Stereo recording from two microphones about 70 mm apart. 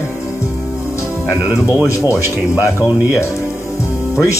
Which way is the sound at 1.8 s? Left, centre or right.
Left.